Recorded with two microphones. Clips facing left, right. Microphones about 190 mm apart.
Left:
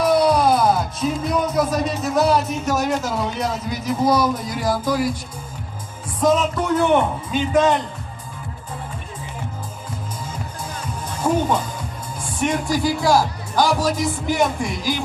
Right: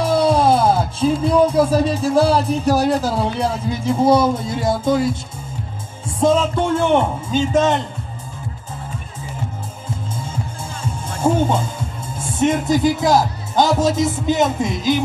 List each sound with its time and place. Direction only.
0.0 s music: 25° right (ahead or behind)
6.1 s speech: 25° right (ahead or behind)
10.8 s music: 25° right (ahead or behind)
12.2 s speech: 25° right (ahead or behind)